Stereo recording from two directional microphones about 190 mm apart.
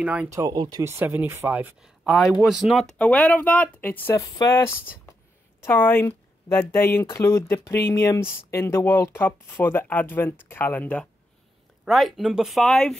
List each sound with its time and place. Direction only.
0.0 s speech: 5° right (ahead or behind)